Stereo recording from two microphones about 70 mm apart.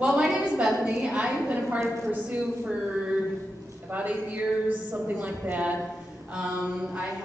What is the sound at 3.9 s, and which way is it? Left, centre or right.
A woman's voice, right.